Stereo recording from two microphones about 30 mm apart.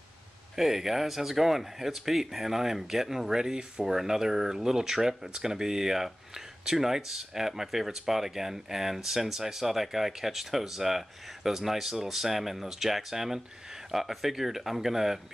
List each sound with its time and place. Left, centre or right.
0.6 s speech: centre